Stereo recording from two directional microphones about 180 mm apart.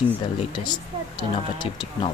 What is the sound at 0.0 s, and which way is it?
Speech, 25° left (ahead or behind).